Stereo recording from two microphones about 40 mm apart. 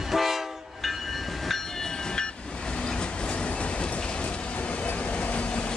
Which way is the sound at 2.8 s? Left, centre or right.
Left.